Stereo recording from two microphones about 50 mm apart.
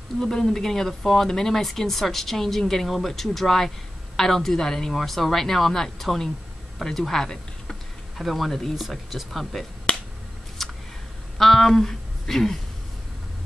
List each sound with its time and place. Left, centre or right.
0.2 s a woman's voice: centre
8.2 s a woman's voice: centre
9.9 s finger snapping: left
10.6 s a sound: centre
11.3 s speech: centre